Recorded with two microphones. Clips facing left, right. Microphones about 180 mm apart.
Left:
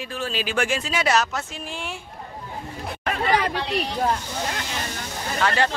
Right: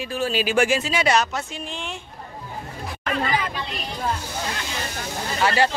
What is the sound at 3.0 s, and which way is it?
Hubbub, 70° left (ahead or behind).